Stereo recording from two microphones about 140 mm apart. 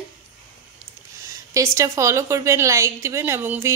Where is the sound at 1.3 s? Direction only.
20° right (ahead or behind).